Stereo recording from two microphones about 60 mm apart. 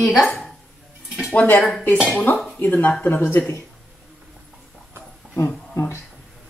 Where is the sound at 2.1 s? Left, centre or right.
Left.